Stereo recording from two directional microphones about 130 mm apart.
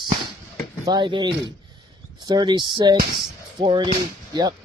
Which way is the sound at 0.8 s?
35° right (ahead or behind).